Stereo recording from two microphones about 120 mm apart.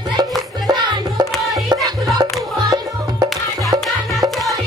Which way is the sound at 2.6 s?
40° right (ahead or behind).